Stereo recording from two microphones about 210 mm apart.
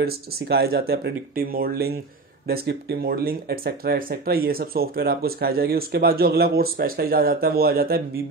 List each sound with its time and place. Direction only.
0.0 s speech: 50° right (ahead or behind)